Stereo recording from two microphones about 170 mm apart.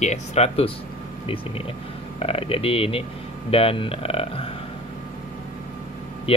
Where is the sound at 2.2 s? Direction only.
35° left (ahead or behind).